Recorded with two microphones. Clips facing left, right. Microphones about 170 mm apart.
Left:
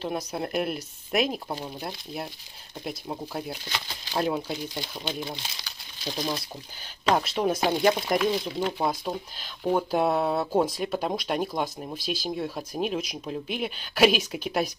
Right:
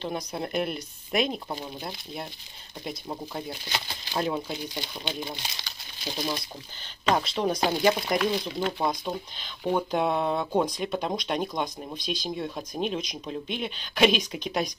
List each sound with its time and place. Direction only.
0.0 s speech: 5° left (ahead or behind)
7.1 s speech: 5° left (ahead or behind)